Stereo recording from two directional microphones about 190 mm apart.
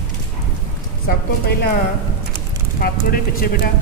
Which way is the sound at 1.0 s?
55° left (ahead or behind).